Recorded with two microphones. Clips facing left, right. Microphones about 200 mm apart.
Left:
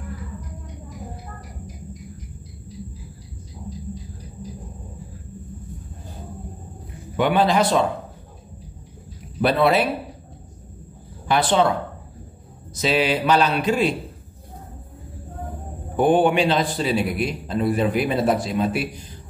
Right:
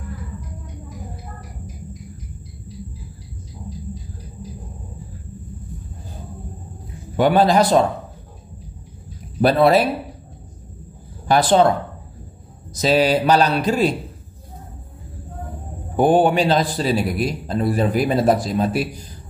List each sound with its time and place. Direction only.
7.2 s a man's voice: 40° right (ahead or behind)
9.4 s a man's voice: 40° right (ahead or behind)
11.2 s speech: 40° right (ahead or behind)
12.7 s a man's voice: 40° right (ahead or behind)
16.0 s a man's voice: 35° right (ahead or behind)